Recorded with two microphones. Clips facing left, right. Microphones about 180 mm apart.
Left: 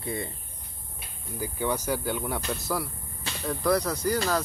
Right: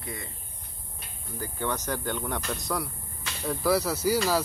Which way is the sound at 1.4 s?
10° left (ahead or behind).